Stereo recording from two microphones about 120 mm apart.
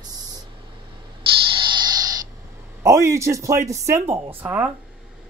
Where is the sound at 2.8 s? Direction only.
25° right (ahead or behind).